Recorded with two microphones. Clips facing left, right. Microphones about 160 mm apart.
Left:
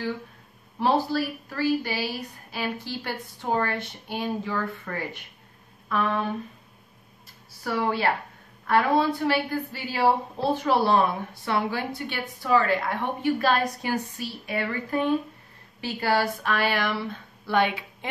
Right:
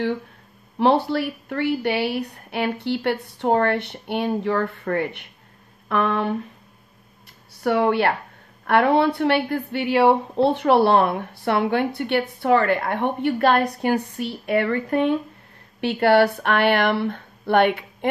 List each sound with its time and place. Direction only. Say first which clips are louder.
0.7 s a woman's voice: right 5 dB; 65° right (ahead or behind)
7.6 s a woman's voice: right 6 dB; 65° right (ahead or behind)